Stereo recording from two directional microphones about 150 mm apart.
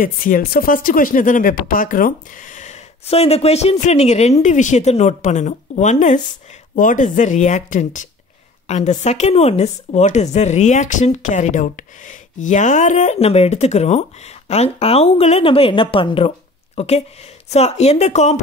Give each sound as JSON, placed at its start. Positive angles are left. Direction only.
{"t": 0.0, "sound": "speech", "side_deg": 70}